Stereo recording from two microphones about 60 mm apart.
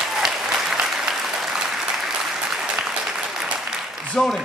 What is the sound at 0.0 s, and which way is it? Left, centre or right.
Applause, centre.